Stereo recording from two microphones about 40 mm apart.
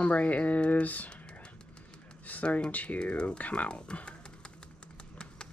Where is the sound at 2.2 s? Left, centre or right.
Left.